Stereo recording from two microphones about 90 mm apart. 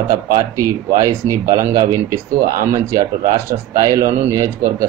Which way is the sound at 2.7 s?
30° right (ahead or behind).